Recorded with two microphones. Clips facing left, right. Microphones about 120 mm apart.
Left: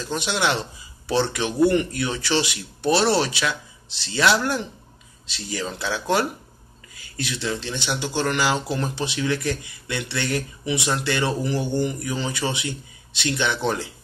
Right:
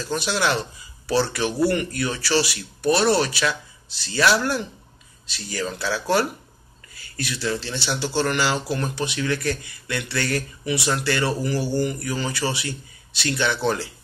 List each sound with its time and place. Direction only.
0.0 s speech: 20° left (ahead or behind)